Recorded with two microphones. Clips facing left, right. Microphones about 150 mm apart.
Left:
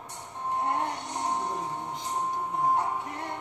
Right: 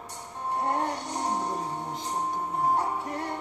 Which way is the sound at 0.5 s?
35° right (ahead or behind).